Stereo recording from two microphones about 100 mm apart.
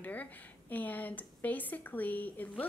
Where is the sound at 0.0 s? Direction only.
15° left (ahead or behind).